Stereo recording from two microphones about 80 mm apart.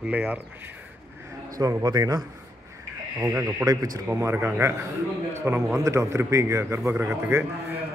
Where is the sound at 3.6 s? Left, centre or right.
Right.